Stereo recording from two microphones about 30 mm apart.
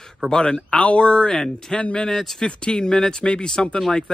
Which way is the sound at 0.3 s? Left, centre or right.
Left.